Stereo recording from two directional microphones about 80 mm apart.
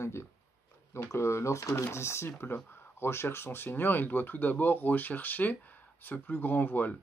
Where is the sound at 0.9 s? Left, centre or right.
Left.